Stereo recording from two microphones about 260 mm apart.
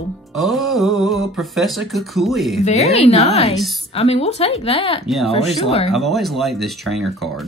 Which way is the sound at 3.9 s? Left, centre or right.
Left.